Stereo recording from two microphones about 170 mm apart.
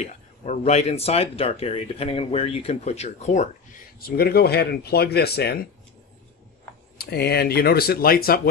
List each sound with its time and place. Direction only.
0.0 s speech: 40° left (ahead or behind)
4.0 s speech: 65° left (ahead or behind)
7.0 s speech: 70° left (ahead or behind)